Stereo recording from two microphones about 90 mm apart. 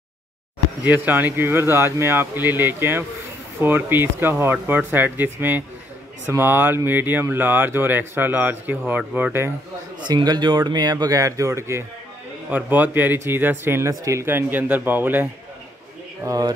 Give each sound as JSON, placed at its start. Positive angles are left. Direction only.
{"t": 0.8, "sound": "speech", "side_deg": -20}
{"t": 9.9, "sound": "speech", "side_deg": -55}
{"t": 12.4, "sound": "speech", "side_deg": -20}
{"t": 13.8, "sound": "speech", "side_deg": -35}
{"t": 16.3, "sound": "speech", "side_deg": -45}